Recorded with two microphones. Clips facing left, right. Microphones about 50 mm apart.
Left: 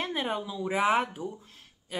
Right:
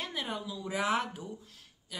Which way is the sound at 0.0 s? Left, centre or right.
Left.